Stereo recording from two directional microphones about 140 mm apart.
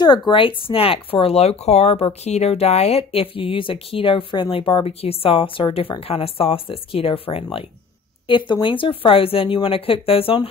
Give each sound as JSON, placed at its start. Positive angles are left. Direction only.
{"t": 0.3, "sound": "speech", "side_deg": 40}